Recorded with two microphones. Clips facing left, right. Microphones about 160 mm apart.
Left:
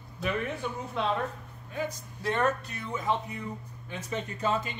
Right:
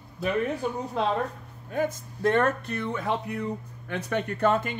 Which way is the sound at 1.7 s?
50° right (ahead or behind).